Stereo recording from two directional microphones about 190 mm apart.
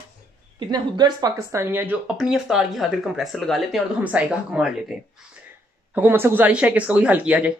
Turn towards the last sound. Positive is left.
turn(degrees=-5)  # may be behind; listen again after turning